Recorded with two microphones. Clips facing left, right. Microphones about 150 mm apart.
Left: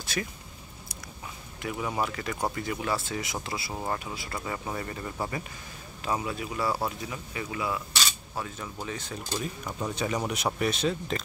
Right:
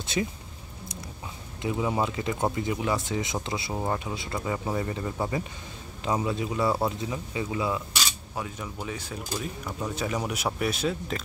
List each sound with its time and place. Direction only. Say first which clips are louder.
0.0 s speech: right 5 dB; 20° right (ahead or behind)
1.6 s speech: right 4 dB; 20° right (ahead or behind); by 11.1 s 5° right (ahead or behind)